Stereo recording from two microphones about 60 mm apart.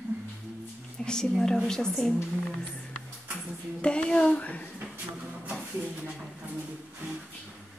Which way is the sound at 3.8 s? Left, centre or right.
Centre.